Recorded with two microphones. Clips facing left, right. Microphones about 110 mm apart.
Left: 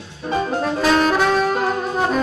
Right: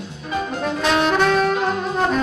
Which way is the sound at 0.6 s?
Centre (ahead or behind).